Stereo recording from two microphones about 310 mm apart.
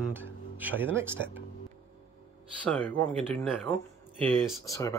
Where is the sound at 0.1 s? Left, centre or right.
Centre.